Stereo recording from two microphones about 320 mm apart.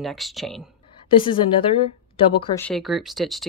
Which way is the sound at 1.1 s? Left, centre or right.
Centre.